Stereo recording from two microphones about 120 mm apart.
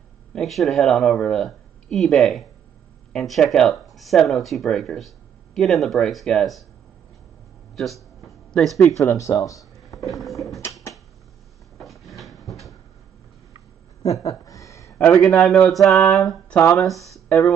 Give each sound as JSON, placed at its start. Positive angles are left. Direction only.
{"t": 0.3, "sound": "speech", "side_deg": 0}
{"t": 7.7, "sound": "speech", "side_deg": 0}
{"t": 8.9, "sound": "speech", "side_deg": 25}
{"t": 10.0, "sound": "speech", "side_deg": 0}
{"t": 10.6, "sound": "a sound", "side_deg": 25}
{"t": 11.8, "sound": "drawer open or close", "side_deg": 0}
{"t": 14.0, "sound": "a sound", "side_deg": 25}
{"t": 15.7, "sound": "speech", "side_deg": 0}
{"t": 16.5, "sound": "speech", "side_deg": 25}
{"t": 16.8, "sound": "speech", "side_deg": 0}